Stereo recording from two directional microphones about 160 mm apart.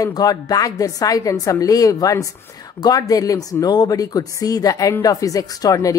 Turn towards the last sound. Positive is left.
turn(degrees=20)  # may be behind; listen again after turning